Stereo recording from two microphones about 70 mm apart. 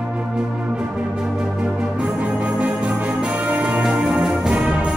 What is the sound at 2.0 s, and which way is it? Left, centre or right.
Music, centre.